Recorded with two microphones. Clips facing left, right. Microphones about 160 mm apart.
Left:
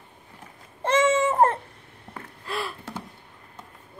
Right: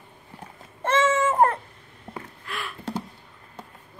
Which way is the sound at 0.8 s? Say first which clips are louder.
Left 1 dB; 15° left (ahead or behind).